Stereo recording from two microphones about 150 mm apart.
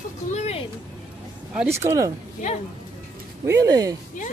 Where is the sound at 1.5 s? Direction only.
15° right (ahead or behind).